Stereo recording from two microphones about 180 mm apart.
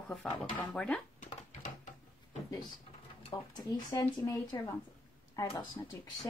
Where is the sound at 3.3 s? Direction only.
20° left (ahead or behind).